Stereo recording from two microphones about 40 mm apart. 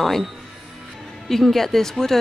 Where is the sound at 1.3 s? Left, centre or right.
Centre.